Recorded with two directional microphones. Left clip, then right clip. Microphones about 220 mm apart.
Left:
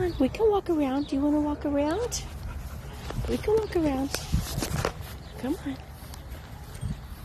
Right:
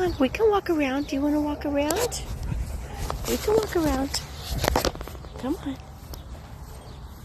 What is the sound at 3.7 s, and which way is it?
Speech, centre (ahead or behind).